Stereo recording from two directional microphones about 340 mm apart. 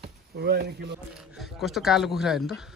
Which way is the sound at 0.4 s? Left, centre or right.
Right.